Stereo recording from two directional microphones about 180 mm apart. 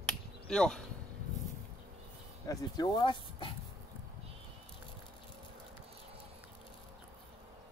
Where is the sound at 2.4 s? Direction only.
20° left (ahead or behind).